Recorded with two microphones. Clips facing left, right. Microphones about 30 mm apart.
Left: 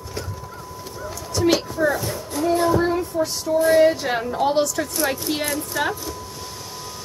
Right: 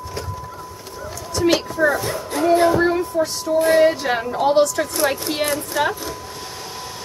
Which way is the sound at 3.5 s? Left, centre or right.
Right.